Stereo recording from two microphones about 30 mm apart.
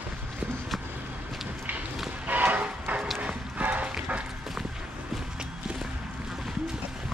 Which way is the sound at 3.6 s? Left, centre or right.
Right.